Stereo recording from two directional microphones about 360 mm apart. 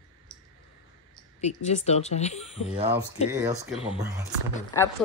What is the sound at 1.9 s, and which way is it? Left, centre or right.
Speech, centre.